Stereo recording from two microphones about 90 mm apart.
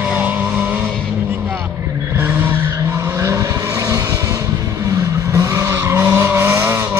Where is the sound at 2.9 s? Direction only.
35° right (ahead or behind).